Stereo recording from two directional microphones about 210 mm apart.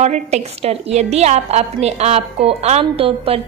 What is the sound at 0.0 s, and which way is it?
A woman's voice, 30° right (ahead or behind).